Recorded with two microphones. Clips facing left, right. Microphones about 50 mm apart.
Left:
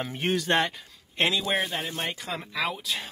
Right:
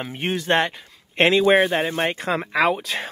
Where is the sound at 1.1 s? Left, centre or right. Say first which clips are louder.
Right 10 dB; right.